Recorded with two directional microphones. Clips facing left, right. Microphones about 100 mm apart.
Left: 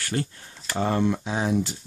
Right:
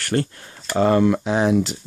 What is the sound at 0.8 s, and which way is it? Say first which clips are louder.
Speech: right 7 dB; 90° right.